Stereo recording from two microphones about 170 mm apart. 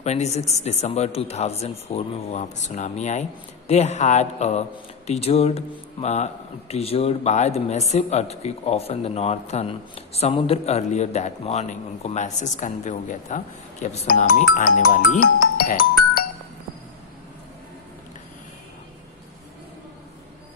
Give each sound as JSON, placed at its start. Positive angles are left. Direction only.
{"t": 0.0, "sound": "speech", "side_deg": 40}